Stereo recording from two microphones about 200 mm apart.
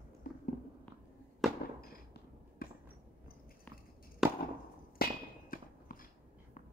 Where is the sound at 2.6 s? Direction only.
50° left (ahead or behind).